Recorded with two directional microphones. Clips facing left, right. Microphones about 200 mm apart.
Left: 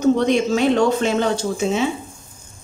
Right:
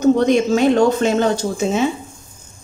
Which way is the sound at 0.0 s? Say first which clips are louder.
Right 3 dB; 45° right (ahead or behind).